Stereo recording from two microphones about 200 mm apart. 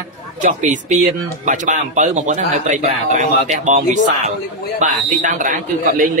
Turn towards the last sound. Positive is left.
turn(degrees=-40)  # may be behind; listen again after turning